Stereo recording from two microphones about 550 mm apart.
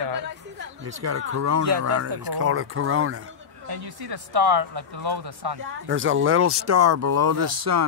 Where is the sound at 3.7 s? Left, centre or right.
Right.